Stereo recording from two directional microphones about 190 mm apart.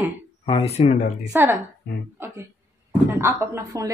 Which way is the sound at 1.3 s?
15° right (ahead or behind).